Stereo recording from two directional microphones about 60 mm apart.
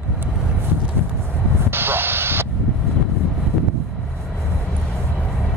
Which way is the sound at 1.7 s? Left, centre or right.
Right.